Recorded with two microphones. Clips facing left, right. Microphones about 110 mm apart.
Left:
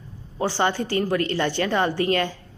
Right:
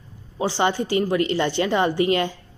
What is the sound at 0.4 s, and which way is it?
A woman's voice, 20° right (ahead or behind).